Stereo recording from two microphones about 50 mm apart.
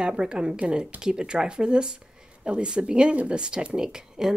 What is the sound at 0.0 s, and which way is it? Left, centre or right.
Speech, centre.